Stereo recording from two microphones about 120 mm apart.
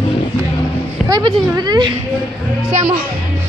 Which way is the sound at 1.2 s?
35° right (ahead or behind).